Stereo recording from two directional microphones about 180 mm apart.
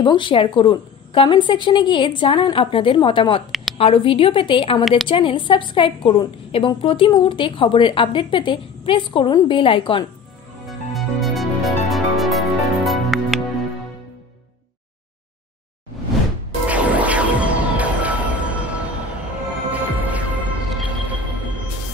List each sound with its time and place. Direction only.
0.0 s a woman's voice: 25° left (ahead or behind)
10.7 s music: centre (ahead or behind)
16.6 s music: 10° right (ahead or behind)